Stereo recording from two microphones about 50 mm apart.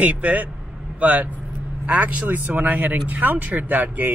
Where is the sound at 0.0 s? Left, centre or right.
Right.